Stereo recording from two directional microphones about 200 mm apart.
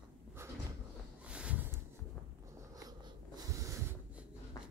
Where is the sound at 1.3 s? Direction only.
5° right (ahead or behind).